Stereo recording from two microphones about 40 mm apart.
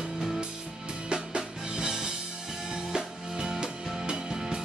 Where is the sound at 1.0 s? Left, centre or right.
Right.